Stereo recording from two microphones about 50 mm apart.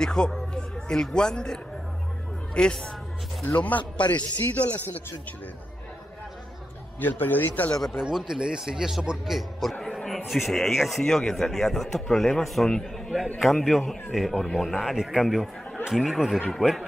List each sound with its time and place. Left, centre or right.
0.0 s speech: centre
0.6 s music: centre
1.1 s speech: centre
3.4 s speech: left
7.0 s speech: left
8.0 s speech: centre
9.3 s speech: centre
9.8 s a sound: centre
10.0 s a man's voice: centre
11.1 s speech: centre